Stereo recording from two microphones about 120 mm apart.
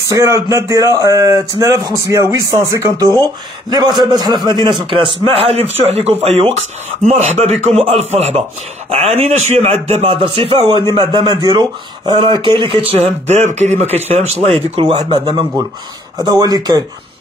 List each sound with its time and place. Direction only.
0.1 s a man's voice: 25° right (ahead or behind); by 6.5 s 60° right (ahead or behind)
7.1 s a man's voice: 75° right (ahead or behind); by 12.8 s 45° right (ahead or behind)
12.9 s a man's voice: 70° right (ahead or behind)
13.9 s speech: 60° right (ahead or behind)
14.5 s a man's voice: 50° right (ahead or behind)